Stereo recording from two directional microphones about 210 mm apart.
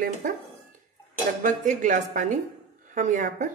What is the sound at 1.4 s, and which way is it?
A woman's voice, 35° right (ahead or behind).